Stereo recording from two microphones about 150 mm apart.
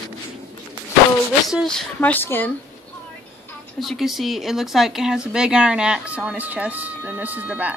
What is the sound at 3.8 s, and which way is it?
Speech, centre (ahead or behind).